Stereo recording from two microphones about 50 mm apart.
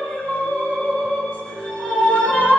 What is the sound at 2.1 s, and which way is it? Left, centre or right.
Music, left.